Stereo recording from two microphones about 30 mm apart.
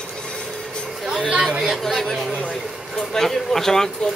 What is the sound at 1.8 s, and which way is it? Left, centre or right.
Speech, centre.